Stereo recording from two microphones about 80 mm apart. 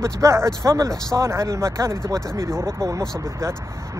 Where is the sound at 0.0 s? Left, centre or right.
Right.